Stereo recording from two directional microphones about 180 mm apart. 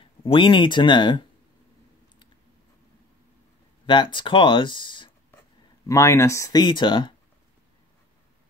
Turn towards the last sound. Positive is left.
turn(degrees=25)  # may be behind; listen again after turning